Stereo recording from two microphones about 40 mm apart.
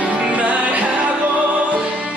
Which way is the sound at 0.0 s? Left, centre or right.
Right.